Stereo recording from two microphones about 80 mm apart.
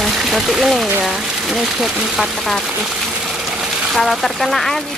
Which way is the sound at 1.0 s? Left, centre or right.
Centre.